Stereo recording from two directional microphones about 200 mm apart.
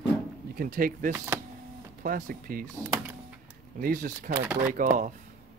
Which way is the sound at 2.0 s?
40° right (ahead or behind).